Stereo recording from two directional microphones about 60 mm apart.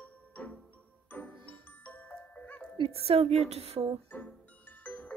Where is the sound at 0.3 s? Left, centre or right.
Left.